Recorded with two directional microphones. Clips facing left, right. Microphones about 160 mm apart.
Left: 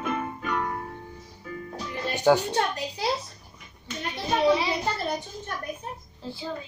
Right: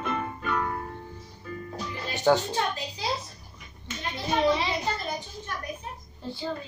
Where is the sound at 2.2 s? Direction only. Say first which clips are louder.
Left 2 dB; 15° left (ahead or behind).